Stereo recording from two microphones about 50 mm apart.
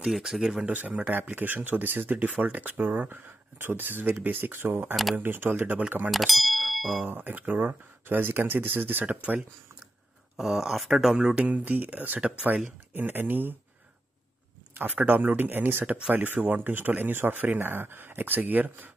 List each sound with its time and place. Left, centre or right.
0.1 s speech: centre
0.7 s speech: right
5.8 s speech: right
6.0 s a sound: centre
7.1 s speech: right
9.0 s speech: right
10.3 s speech: centre
11.6 s speech: right
12.2 s speech: right
12.9 s speech: right
14.8 s speech: right
15.0 s speech: right
15.9 s speech: right